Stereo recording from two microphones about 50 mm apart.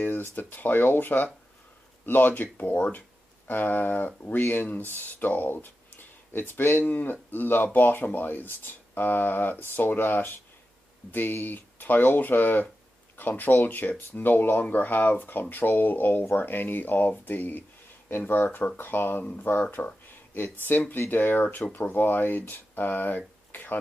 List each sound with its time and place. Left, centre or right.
0.0 s speech: left
17.2 s a sound: left
18.1 s speech: left